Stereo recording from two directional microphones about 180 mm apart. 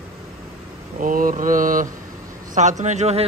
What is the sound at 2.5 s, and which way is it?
Speech, 40° right (ahead or behind).